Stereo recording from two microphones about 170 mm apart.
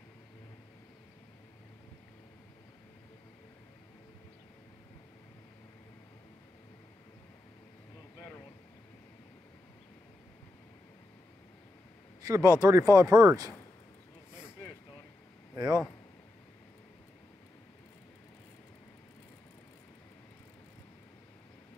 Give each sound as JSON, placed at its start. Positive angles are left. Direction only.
{"t": 12.2, "sound": "speech", "side_deg": -20}
{"t": 15.5, "sound": "speech", "side_deg": -20}